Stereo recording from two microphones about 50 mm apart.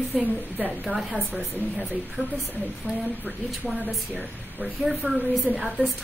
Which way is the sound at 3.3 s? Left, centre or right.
Centre.